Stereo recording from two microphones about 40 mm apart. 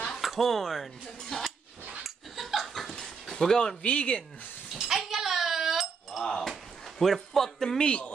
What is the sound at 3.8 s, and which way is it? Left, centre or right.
Speech, left.